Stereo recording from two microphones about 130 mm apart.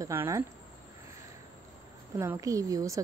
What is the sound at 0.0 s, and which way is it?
Speech, 20° right (ahead or behind).